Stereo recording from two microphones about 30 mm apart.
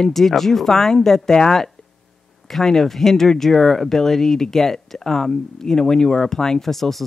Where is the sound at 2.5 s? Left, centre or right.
Centre.